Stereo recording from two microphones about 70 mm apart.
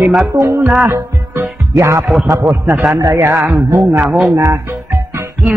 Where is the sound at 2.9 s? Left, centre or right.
Right.